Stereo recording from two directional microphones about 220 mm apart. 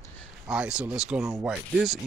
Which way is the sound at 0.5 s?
5° right (ahead or behind).